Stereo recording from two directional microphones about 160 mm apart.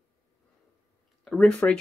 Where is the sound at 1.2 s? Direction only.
5° left (ahead or behind).